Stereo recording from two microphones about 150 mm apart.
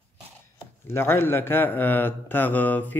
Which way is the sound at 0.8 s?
15° left (ahead or behind).